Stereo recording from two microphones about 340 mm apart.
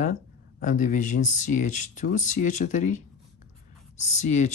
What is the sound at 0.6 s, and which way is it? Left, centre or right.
Speech, left.